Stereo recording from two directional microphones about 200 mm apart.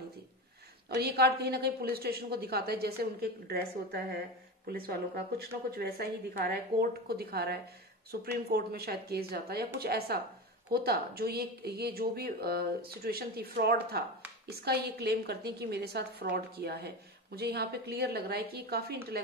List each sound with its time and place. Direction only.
0.8 s speech: 55° right (ahead or behind)